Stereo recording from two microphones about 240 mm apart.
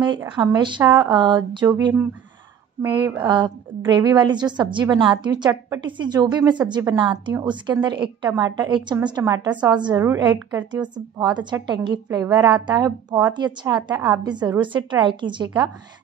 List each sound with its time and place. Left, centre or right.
0.0 s a woman's voice: centre